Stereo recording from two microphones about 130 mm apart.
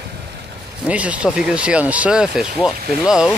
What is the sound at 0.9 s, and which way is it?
Speech, 10° right (ahead or behind).